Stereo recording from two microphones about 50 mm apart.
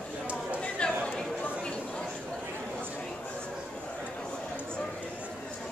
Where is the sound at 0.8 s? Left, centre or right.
Left.